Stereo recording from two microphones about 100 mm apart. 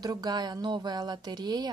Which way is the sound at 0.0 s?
40° right (ahead or behind).